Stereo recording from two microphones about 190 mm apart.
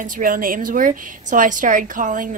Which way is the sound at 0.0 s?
45° right (ahead or behind).